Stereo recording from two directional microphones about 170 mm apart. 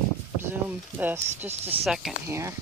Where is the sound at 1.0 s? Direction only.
10° right (ahead or behind).